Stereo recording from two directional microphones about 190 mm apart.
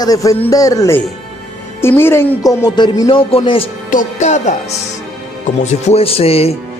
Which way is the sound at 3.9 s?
40° left (ahead or behind).